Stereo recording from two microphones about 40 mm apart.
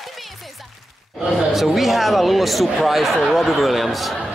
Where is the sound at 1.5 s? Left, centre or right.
Centre.